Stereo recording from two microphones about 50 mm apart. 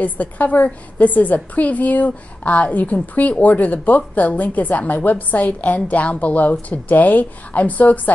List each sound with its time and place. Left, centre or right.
0.0 s a woman's voice: left